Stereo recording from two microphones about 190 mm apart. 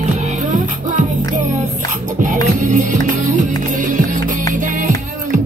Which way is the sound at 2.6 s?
40° right (ahead or behind).